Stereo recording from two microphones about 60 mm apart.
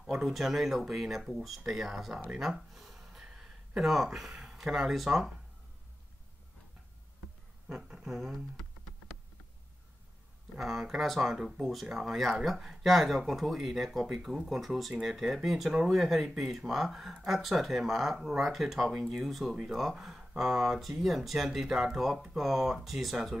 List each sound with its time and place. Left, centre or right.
0.0 s speech: centre
2.3 s a sound: centre
4.5 s speech: centre
7.6 s a sound: centre
10.6 s speech: centre
11.3 s speech: centre
11.6 s speech: centre